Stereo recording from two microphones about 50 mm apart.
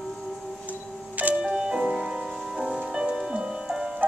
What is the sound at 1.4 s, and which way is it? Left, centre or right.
Music, centre.